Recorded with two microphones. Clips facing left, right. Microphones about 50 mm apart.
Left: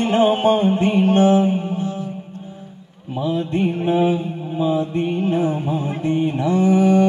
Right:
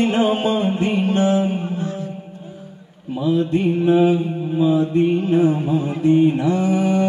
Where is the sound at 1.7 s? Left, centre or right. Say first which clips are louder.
Left 1 dB; right.